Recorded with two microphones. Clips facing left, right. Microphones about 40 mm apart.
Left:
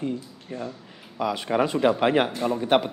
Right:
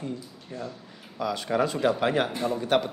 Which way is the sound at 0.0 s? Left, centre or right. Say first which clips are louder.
Left 5 dB; left.